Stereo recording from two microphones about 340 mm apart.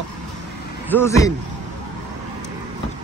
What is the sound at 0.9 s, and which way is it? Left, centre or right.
Speech, centre.